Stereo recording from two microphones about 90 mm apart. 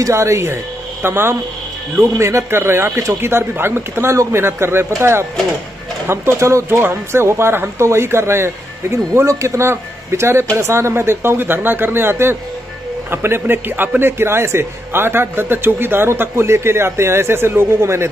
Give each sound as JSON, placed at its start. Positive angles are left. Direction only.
{"t": 0.0, "sound": "a man's voice", "side_deg": -35}
{"t": 6.0, "sound": "a man's voice", "side_deg": -30}